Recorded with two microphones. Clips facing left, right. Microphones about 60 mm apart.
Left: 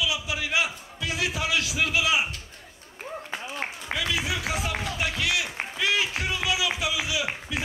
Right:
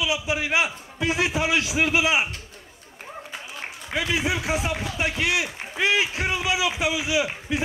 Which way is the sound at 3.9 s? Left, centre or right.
Right.